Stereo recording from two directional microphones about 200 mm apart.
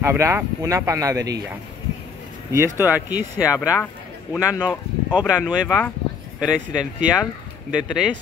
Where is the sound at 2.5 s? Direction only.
15° right (ahead or behind).